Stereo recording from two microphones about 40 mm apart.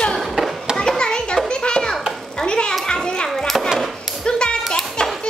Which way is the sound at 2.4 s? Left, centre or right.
Left.